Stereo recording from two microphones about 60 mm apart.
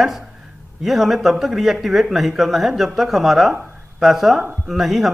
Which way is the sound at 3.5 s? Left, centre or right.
Right.